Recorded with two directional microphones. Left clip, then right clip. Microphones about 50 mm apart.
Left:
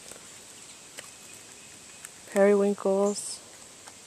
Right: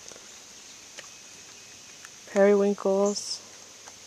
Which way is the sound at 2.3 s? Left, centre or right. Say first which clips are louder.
Right 1 dB; centre.